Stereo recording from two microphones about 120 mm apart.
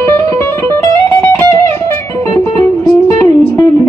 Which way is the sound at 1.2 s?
25° left (ahead or behind).